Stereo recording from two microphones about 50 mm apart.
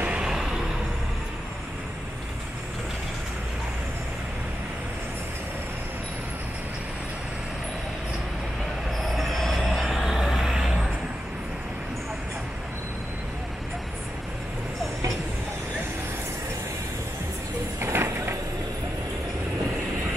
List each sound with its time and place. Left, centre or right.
0.2 s vehicle: centre
9.1 s vehicle: centre
17.7 s a sound: right